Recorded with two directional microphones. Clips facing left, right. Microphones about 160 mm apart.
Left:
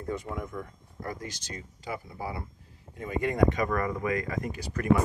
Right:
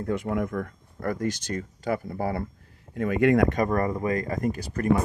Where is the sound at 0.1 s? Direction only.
75° right (ahead or behind); by 2.4 s 55° right (ahead or behind).